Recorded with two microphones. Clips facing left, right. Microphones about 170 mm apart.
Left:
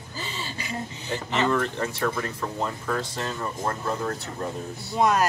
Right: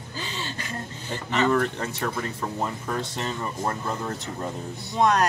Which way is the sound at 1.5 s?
20° right (ahead or behind).